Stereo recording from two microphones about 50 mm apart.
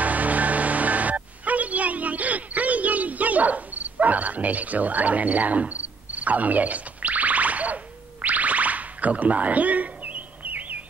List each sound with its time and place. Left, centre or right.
0.0 s music: right